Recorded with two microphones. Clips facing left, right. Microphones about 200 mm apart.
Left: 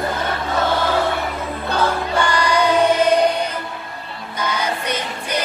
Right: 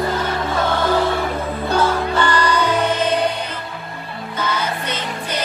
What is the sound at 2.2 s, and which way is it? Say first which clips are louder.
Music: left 1 dB; 10° left (ahead or behind).